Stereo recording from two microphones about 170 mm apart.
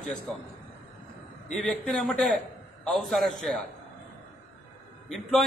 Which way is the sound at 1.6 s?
5° left (ahead or behind).